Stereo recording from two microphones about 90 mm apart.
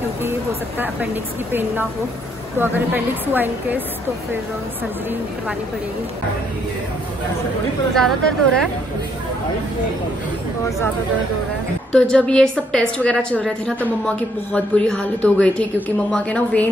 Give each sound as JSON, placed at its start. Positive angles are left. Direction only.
{"t": 0.2, "sound": "a woman's voice", "side_deg": -25}
{"t": 7.9, "sound": "speech", "side_deg": 5}
{"t": 11.9, "sound": "a woman's voice", "side_deg": 10}